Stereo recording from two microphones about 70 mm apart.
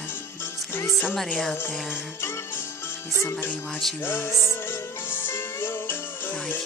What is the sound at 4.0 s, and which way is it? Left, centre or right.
Music, left.